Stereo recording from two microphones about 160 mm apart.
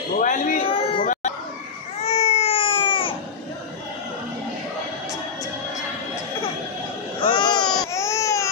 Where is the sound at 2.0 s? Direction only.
40° left (ahead or behind).